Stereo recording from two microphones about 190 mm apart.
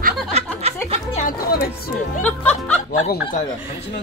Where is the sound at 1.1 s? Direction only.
45° left (ahead or behind).